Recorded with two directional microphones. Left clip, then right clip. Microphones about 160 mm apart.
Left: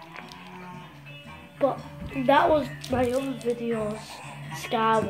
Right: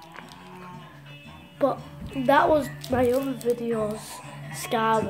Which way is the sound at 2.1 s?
10° right (ahead or behind).